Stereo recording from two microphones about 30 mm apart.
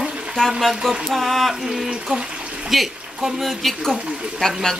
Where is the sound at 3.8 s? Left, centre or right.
Centre.